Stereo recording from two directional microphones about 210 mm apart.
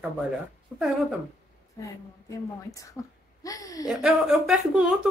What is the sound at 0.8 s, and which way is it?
Speech, centre (ahead or behind).